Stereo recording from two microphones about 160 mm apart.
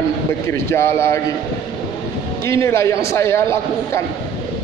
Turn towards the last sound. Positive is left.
turn(degrees=15)  # may be behind; listen again after turning